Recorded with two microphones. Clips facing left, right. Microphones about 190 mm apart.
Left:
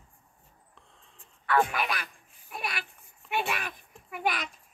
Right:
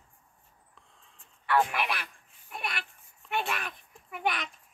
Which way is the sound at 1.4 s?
5° right (ahead or behind).